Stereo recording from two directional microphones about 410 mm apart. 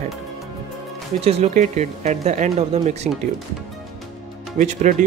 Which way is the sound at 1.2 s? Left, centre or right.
Centre.